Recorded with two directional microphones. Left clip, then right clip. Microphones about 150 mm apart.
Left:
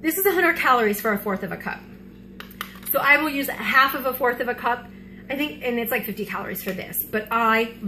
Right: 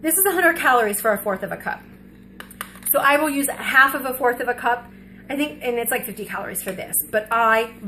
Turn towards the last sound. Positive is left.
turn(degrees=-40)  # may be behind; listen again after turning